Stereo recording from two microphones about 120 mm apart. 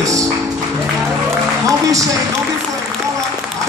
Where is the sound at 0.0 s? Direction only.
25° right (ahead or behind).